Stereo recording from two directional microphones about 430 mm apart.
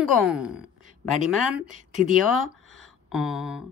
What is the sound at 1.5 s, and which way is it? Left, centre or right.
Speech, centre.